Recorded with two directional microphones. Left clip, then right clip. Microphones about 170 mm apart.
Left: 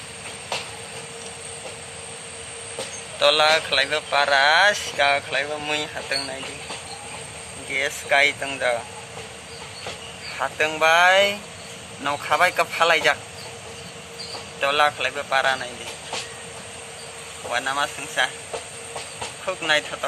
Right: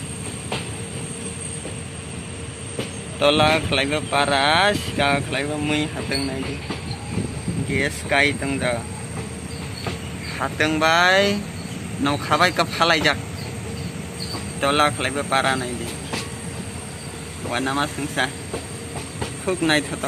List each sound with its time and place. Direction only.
3.2 s speech: 5° right (ahead or behind)
7.7 s speech: 10° left (ahead or behind)
10.4 s speech: 5° left (ahead or behind)
14.6 s speech: 5° right (ahead or behind)
17.5 s speech: 10° right (ahead or behind)
19.4 s speech: 5° right (ahead or behind)